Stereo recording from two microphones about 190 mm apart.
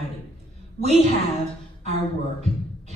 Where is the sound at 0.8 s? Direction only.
35° right (ahead or behind).